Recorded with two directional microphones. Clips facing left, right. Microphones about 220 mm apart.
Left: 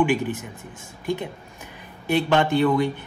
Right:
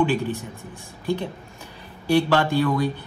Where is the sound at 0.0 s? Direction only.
20° left (ahead or behind).